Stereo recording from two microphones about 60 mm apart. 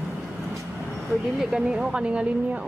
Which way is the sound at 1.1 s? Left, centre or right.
Centre.